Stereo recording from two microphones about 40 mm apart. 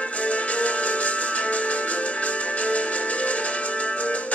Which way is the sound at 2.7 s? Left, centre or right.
Left.